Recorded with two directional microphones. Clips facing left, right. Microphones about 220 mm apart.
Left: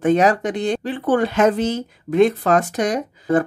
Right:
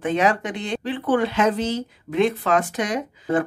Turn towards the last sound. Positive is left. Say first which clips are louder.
# left 4 dB
turn(degrees=40)  # may be behind; listen again after turning